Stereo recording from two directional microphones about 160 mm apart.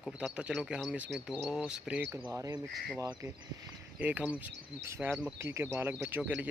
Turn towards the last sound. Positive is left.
turn(degrees=-10)  # may be behind; listen again after turning